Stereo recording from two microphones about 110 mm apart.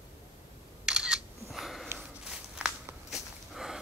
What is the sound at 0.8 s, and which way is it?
Single-lens reflex camera, 5° right (ahead or behind).